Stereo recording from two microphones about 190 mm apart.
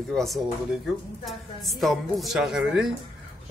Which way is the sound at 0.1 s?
Centre (ahead or behind).